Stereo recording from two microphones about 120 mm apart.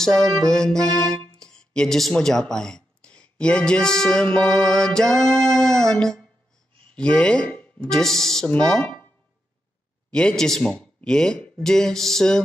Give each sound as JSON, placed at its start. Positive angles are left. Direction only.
{"t": 0.0, "sound": "music", "side_deg": 5}
{"t": 0.5, "sound": "speech", "side_deg": 5}
{"t": 10.1, "sound": "speech", "side_deg": 5}